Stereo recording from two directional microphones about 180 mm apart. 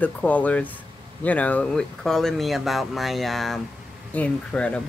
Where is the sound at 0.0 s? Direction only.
10° left (ahead or behind).